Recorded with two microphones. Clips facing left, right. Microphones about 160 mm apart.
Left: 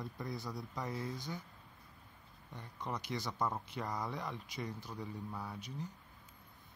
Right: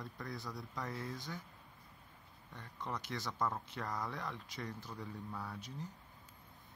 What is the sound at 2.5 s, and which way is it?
Speech, 15° left (ahead or behind).